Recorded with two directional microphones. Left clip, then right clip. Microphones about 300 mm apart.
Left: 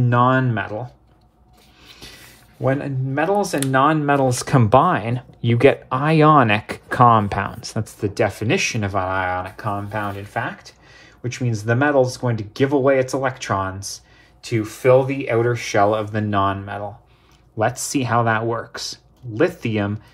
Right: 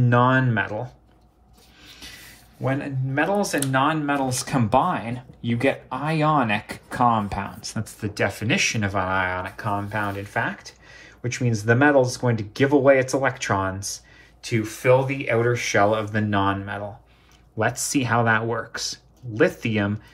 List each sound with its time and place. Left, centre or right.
0.0 s speech: centre
2.0 s speech: left